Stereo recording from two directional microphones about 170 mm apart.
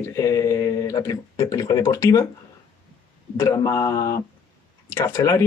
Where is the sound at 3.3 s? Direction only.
20° left (ahead or behind).